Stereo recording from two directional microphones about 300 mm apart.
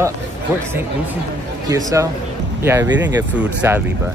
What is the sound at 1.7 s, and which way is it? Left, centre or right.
Speech, centre.